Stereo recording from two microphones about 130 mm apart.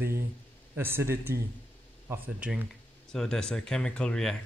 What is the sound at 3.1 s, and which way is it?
A man's voice, 5° left (ahead or behind).